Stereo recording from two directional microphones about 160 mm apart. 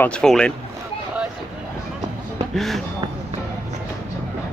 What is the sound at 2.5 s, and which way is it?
Speech, centre (ahead or behind).